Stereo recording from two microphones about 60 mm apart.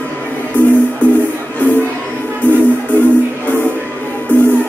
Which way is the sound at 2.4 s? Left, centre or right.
Left.